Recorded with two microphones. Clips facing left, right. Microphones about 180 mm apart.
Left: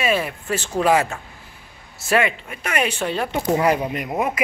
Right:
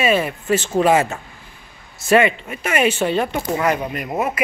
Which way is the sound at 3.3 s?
30° left (ahead or behind).